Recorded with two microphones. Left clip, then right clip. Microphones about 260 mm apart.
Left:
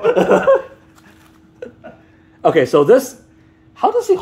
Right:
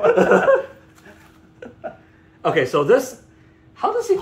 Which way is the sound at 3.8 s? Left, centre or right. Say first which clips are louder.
Left 5 dB; left.